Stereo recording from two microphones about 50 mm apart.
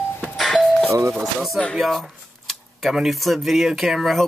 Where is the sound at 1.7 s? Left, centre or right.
Centre.